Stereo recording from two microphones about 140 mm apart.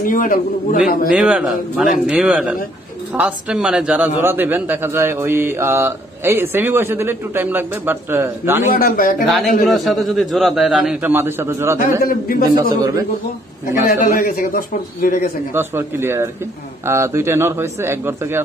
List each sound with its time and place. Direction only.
0.1 s speech: 80° left
1.0 s speech: 10° right (ahead or behind)
8.7 s speech: 85° left
9.2 s a man's voice: centre (ahead or behind); by 11.8 s 20° right (ahead or behind)
12.0 s a man's voice: 90° left
13.8 s a man's voice: 90° left
15.5 s speech: 15° right (ahead or behind)